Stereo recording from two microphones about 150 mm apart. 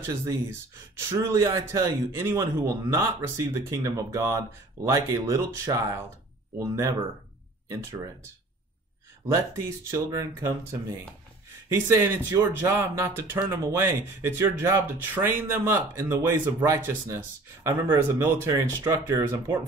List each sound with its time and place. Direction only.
0.1 s a man's voice: 15° right (ahead or behind)
9.8 s a man's voice: 20° right (ahead or behind)